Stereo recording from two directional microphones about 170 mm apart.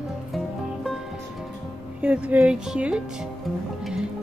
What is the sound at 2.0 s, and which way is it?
A woman's voice, 5° right (ahead or behind).